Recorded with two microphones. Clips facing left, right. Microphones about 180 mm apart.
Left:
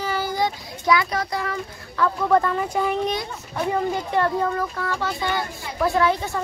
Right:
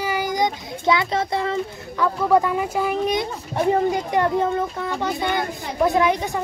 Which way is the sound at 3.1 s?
25° right (ahead or behind).